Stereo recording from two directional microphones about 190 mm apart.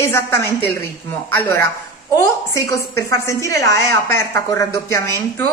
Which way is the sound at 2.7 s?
15° left (ahead or behind).